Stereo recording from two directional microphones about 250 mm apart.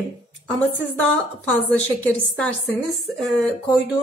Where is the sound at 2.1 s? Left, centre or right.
Centre.